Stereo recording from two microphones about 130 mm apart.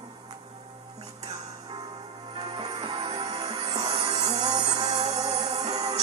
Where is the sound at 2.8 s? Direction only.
35° right (ahead or behind).